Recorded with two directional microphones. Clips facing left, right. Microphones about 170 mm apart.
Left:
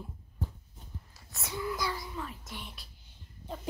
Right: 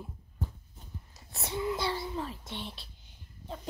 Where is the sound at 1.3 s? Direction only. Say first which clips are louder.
Right 3 dB; 30° right (ahead or behind).